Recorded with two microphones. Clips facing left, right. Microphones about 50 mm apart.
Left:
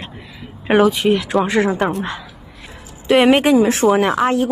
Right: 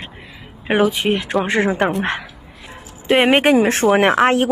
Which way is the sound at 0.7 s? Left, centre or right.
Centre.